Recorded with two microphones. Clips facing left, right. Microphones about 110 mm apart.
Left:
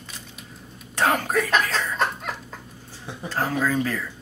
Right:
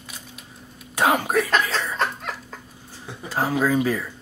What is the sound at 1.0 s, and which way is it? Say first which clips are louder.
Speech: right 2 dB; 10° right (ahead or behind).